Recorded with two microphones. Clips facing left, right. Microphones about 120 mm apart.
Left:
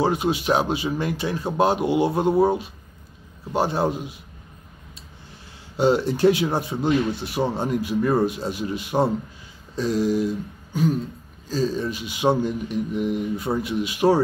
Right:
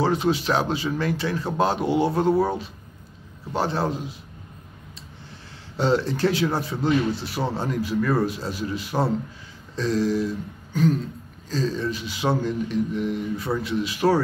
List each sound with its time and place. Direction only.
0.0 s speech: 15° left (ahead or behind)
5.8 s speech: 15° left (ahead or behind)
9.8 s throat clearing: 15° left (ahead or behind)
11.4 s speech: 10° left (ahead or behind)